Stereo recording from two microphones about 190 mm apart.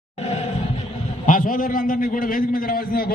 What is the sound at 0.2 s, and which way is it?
Music, 35° left (ahead or behind).